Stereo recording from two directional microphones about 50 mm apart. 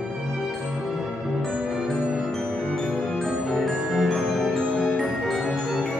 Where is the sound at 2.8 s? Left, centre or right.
Centre.